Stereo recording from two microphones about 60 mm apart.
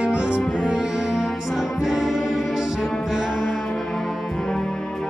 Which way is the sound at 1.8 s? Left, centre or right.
Centre.